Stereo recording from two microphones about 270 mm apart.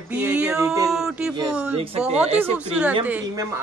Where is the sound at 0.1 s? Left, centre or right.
Centre.